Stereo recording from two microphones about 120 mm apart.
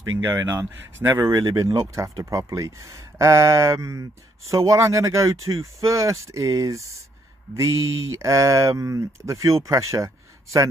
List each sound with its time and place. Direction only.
0.2 s speech: 20° right (ahead or behind)